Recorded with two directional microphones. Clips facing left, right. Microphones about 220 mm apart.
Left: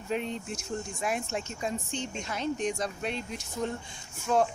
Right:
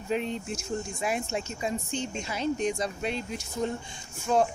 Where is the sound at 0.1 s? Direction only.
Centre (ahead or behind).